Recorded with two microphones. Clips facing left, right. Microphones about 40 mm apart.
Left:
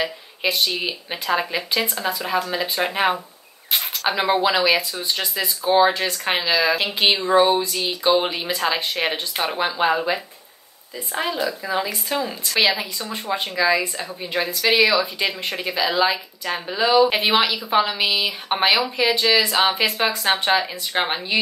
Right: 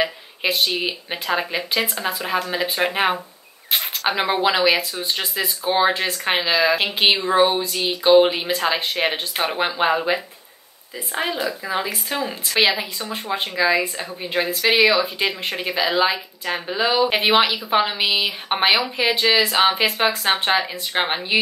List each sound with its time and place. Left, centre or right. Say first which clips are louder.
0.0 s speech: right 1 dB; centre
1.8 s speech: even; right